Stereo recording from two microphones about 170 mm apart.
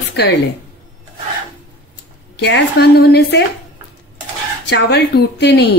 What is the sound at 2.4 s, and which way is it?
A woman's voice, 90° left.